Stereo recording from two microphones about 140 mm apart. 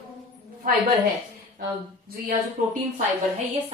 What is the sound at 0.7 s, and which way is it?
Speech, 90° right.